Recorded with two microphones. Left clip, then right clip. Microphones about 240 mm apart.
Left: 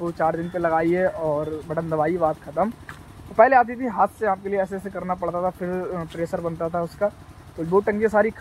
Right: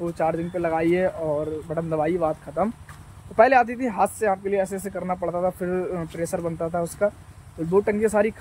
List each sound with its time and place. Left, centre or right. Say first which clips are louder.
0.0 s speech: left 1 dB; centre